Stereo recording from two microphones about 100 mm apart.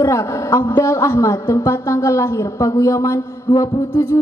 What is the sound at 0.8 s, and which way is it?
A woman's voice, 30° left (ahead or behind).